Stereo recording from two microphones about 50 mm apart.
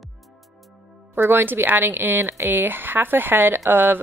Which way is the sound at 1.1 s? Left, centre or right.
Right.